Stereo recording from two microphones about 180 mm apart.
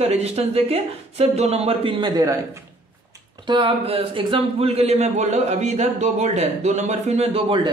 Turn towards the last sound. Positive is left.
turn(degrees=-30)  # may be behind; listen again after turning